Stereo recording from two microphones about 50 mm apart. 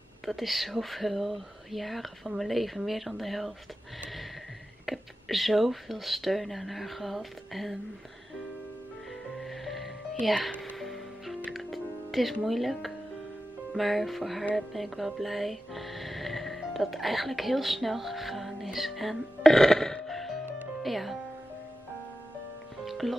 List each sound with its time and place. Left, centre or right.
0.2 s speech: centre
4.8 s speech: centre
9.3 s music: centre
12.4 s speech: centre
14.5 s music: centre
20.8 s speech: centre
22.8 s music: centre